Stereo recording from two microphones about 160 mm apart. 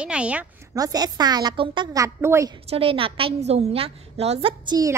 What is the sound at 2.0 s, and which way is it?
Speech, 20° right (ahead or behind).